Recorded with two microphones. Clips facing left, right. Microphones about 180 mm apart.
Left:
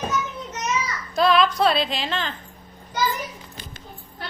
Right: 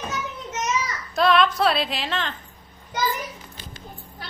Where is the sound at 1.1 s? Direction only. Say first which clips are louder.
Even; centre (ahead or behind).